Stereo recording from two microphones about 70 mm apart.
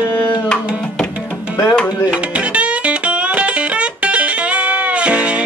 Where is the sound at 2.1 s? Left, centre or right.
Centre.